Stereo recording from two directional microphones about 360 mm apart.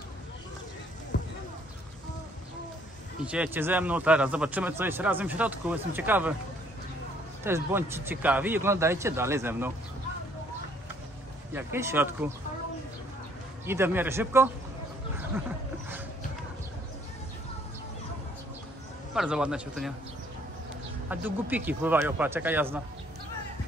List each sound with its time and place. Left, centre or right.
1.1 s clip-clop: left
3.3 s speech: centre
7.4 s a man's voice: centre
11.5 s a man's voice: centre
13.7 s a man's voice: centre
19.1 s speech: centre
21.1 s speech: centre